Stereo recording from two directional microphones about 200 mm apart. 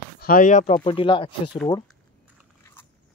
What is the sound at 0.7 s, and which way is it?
Speech, 25° left (ahead or behind).